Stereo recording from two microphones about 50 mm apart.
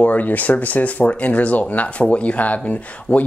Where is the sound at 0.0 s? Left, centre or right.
Left.